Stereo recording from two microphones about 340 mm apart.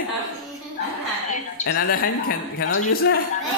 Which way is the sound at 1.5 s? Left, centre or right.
Left.